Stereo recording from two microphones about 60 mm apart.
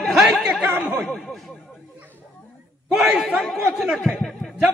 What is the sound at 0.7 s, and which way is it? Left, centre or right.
Speech, right.